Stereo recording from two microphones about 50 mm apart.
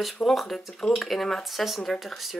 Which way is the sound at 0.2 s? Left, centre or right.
Centre.